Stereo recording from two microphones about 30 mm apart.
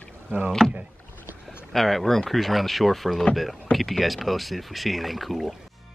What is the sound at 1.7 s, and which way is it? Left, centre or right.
Speech, centre.